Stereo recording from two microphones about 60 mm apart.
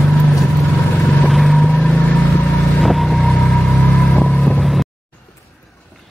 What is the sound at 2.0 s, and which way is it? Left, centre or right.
Vehicle, left.